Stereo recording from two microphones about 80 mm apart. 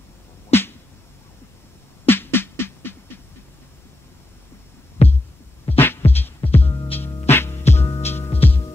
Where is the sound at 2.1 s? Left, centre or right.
Left.